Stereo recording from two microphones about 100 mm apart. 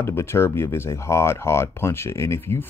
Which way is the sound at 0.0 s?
25° left (ahead or behind).